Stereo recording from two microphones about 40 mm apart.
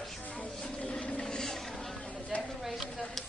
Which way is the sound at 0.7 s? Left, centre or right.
Left.